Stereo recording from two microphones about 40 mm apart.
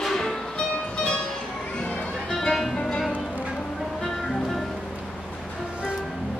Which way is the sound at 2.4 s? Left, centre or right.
Centre.